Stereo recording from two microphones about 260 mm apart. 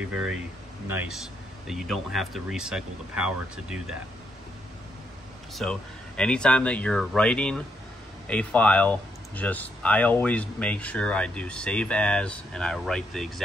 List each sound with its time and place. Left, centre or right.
0.0 s speech: centre
5.5 s speech: centre